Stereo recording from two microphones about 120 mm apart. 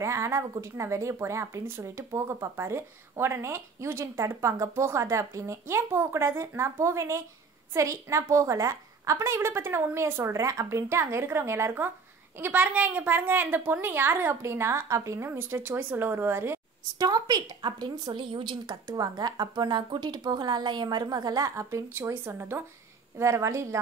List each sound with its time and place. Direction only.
0.0 s a woman's voice: 25° right (ahead or behind)
17.0 s a woman's voice: 35° right (ahead or behind)